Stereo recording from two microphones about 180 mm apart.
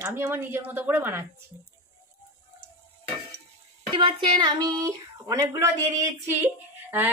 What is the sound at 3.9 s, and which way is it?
Speech, 25° right (ahead or behind).